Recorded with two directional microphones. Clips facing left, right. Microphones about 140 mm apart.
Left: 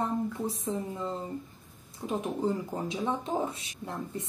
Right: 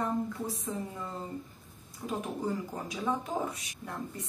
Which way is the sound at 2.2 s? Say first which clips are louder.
Left 4 dB; 25° left (ahead or behind).